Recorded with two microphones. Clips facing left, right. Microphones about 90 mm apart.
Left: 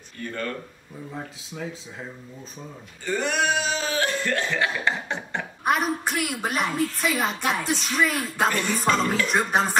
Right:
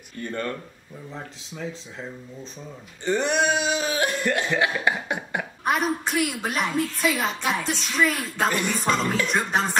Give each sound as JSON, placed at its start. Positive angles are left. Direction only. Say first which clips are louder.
{"t": 0.2, "sound": "speech", "louder": "right 2 dB", "side_deg": -20}
{"t": 1.1, "sound": "a woman's voice", "louder": "left 1 dB", "side_deg": 5}
{"t": 3.1, "sound": "cough", "louder": "right 2 dB", "side_deg": -20}
{"t": 5.7, "sound": "a woman's voice", "louder": "even", "side_deg": 0}